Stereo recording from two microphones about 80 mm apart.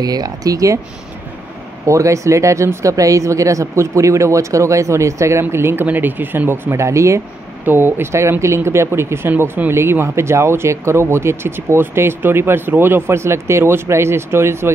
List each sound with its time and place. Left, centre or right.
0.0 s speech: right
1.9 s speech: right
7.6 s speech: right